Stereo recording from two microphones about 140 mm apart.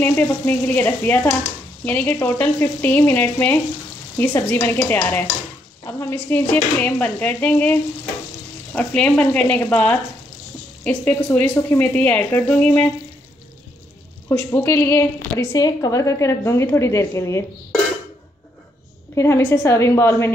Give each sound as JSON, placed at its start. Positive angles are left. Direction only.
{"t": 0.0, "sound": "dishes", "side_deg": 15}
{"t": 14.5, "sound": "a woman's voice", "side_deg": 20}
{"t": 19.1, "sound": "a woman's voice", "side_deg": 20}